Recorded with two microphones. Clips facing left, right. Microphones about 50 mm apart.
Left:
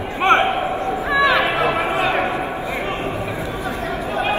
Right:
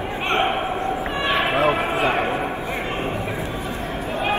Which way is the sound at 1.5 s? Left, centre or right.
Left.